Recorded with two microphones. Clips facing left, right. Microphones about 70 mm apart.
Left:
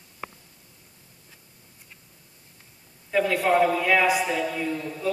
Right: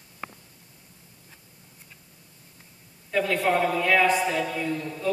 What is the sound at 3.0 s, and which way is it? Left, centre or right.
A man's voice, centre.